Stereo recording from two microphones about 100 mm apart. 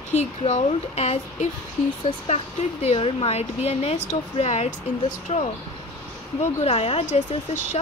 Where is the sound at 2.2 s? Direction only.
90° left.